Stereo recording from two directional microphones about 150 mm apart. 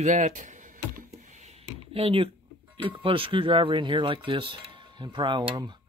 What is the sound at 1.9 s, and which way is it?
Speech, 40° right (ahead or behind).